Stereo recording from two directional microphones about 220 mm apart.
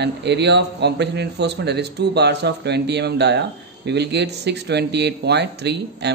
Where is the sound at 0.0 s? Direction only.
50° right (ahead or behind).